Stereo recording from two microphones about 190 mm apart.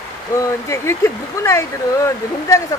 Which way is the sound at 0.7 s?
15° left (ahead or behind).